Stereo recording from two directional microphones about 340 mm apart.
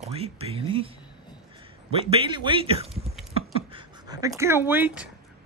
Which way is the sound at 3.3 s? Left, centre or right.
Centre.